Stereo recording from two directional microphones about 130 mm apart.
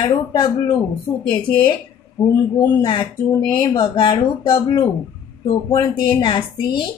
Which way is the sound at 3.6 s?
35° left (ahead or behind).